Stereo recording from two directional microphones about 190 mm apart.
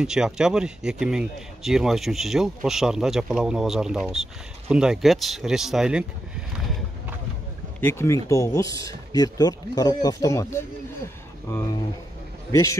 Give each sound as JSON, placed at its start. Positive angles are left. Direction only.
{"t": 0.0, "sound": "speech", "side_deg": -5}
{"t": 7.8, "sound": "speech", "side_deg": 15}
{"t": 12.4, "sound": "a man's voice", "side_deg": 15}